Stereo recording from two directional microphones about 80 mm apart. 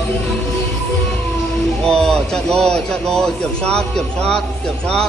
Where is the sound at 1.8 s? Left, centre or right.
Centre.